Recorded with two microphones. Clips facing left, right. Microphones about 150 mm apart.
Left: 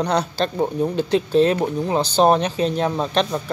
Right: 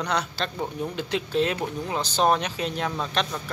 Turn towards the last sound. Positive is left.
turn(degrees=35)  # may be behind; listen again after turning